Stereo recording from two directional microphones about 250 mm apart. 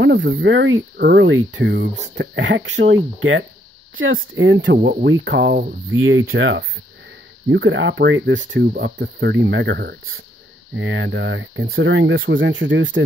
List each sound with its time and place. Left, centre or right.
0.0 s speech: right
5.9 s speech: right